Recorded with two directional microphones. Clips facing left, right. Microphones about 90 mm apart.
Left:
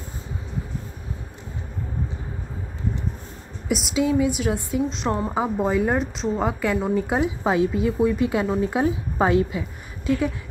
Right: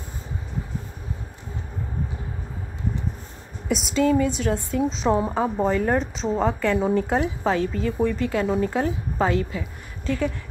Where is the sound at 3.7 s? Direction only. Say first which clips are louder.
Right 1 dB; centre (ahead or behind).